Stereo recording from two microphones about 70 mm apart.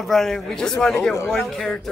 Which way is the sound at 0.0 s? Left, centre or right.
Centre.